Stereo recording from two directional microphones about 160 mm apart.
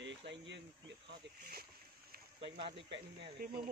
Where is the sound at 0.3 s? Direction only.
90° right; by 1.7 s 70° right (ahead or behind).